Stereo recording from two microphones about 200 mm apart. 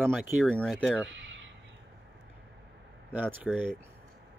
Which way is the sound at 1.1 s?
70° right (ahead or behind).